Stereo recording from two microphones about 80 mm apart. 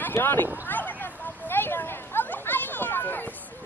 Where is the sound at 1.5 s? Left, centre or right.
Left.